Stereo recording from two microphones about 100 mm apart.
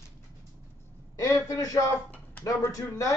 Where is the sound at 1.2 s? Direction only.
35° left (ahead or behind).